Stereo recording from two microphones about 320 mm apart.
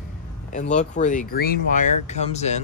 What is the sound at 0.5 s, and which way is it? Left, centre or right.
Speech, left.